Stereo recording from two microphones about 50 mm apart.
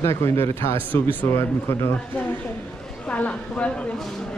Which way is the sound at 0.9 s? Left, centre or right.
Left.